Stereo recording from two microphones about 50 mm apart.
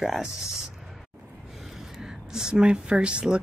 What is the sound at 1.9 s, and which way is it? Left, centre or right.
Speech, centre.